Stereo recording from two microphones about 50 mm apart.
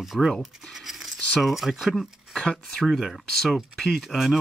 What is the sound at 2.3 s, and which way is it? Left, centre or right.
Speech, centre.